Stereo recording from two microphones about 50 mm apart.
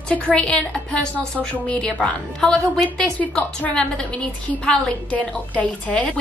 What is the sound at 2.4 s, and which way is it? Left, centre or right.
Speech, centre.